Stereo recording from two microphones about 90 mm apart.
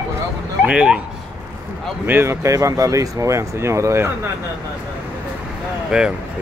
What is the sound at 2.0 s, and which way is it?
Speech, 25° right (ahead or behind).